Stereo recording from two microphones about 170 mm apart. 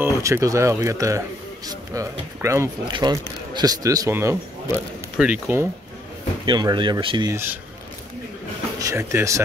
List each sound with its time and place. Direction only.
0.0 s speech: 15° right (ahead or behind)
6.4 s speech: 25° right (ahead or behind)
8.7 s speech: 20° right (ahead or behind)